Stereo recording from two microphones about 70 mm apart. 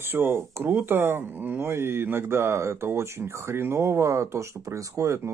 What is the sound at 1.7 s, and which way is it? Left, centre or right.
Speech, right.